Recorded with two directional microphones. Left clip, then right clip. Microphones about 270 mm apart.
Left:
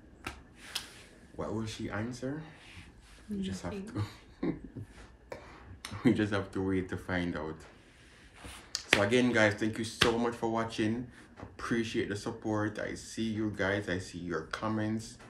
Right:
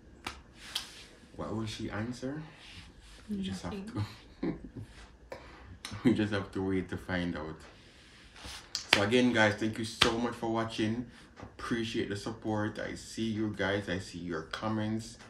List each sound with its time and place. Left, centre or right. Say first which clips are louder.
1.4 s speech: left 1 dB; centre
3.4 s speech: left 2 dB; centre
8.7 s speech: even; centre